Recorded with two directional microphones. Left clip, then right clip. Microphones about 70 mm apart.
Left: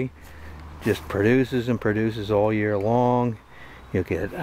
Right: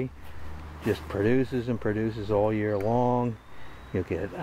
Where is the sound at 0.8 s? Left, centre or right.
Left.